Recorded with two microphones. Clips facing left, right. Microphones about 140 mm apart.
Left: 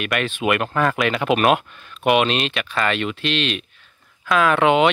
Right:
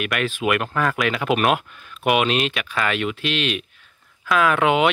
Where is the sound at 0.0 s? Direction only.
5° right (ahead or behind).